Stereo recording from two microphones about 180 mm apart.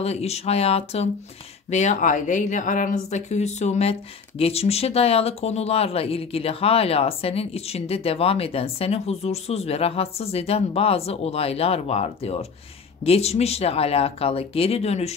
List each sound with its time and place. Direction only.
0.0 s speech: 35° left (ahead or behind)